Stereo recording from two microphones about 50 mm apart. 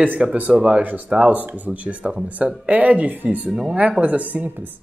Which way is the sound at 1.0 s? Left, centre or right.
Right.